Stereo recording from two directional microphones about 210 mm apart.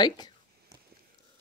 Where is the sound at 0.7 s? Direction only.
20° right (ahead or behind).